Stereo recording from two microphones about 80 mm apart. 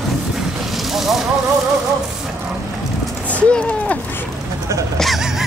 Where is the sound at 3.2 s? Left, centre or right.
Centre.